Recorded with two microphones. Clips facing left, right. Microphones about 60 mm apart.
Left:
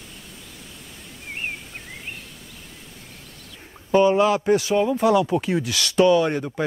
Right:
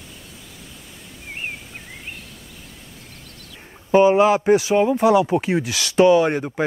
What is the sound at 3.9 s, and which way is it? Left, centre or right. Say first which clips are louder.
Speech: right 3 dB; centre.